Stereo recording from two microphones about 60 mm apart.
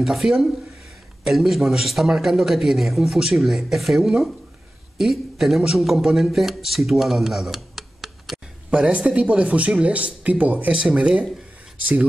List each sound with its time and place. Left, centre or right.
0.0 s a man's voice: centre
8.6 s speech: centre
10.9 s speech: centre